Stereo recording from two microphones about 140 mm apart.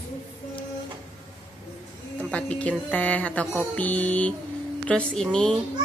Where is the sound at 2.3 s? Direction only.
10° left (ahead or behind).